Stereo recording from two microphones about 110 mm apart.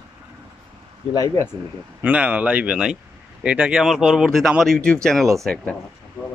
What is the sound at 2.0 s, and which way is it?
Speech, 10° right (ahead or behind).